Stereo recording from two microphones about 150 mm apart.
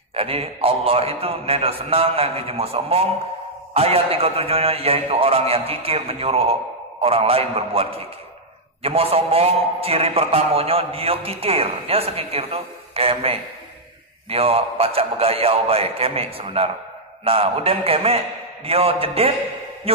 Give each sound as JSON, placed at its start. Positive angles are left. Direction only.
{"t": 0.1, "sound": "a man's voice", "side_deg": -40}